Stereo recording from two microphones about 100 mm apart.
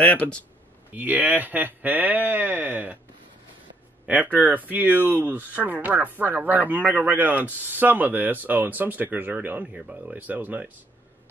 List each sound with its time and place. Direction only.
0.0 s speech: 15° left (ahead or behind)
0.9 s speech: 15° right (ahead or behind)
4.0 s speech: 15° right (ahead or behind)